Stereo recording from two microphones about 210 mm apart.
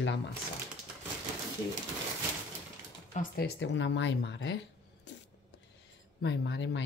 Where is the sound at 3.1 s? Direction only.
45° left (ahead or behind).